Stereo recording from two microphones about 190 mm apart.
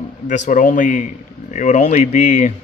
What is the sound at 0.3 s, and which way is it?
Speech, 40° left (ahead or behind).